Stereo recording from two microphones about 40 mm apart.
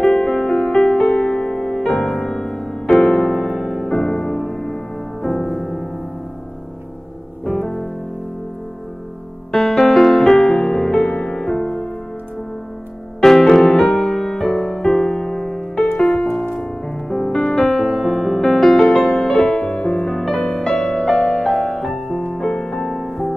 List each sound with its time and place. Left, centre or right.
0.0 s music: centre
3.9 s music: centre
5.4 s music: centre
7.4 s music: centre
9.5 s music: centre
13.2 s music: centre
17.3 s music: left
17.6 s music: centre
19.4 s music: left
20.1 s music: centre
20.3 s music: left; by 22.4 s centre
22.4 s music: centre
22.9 s music: centre